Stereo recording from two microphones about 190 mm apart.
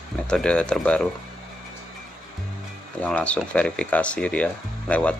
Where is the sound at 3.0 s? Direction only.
5° left (ahead or behind).